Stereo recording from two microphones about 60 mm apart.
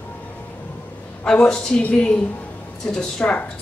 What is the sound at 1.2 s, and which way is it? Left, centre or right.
A woman's voice, centre.